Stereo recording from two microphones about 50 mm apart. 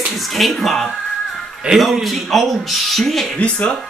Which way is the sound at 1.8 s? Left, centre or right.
Centre.